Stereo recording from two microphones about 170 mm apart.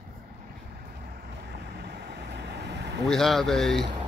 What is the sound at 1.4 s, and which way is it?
Vehicle, 75° right (ahead or behind).